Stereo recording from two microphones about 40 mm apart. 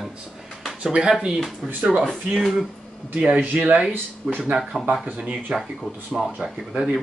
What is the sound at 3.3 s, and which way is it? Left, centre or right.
Speech, right.